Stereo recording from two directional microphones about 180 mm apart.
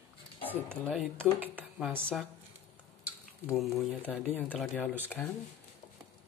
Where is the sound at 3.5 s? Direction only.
Centre (ahead or behind).